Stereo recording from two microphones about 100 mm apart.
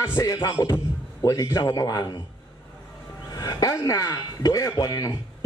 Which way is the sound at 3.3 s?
35° left (ahead or behind).